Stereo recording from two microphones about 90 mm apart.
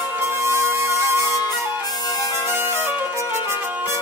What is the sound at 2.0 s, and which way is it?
Music, 45° left (ahead or behind).